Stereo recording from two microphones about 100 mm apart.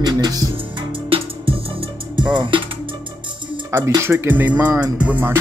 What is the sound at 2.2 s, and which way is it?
Music, 50° right (ahead or behind).